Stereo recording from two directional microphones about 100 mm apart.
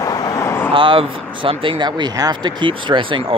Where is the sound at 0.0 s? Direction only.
35° left (ahead or behind).